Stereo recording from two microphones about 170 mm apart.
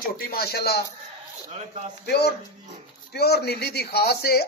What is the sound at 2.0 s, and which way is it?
Speech, 75° left (ahead or behind).